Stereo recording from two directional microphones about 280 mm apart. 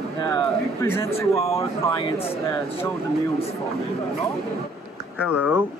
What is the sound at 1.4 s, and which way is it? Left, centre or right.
Speech, left.